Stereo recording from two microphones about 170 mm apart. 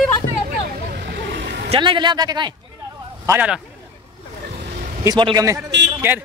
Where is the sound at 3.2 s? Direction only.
10° right (ahead or behind).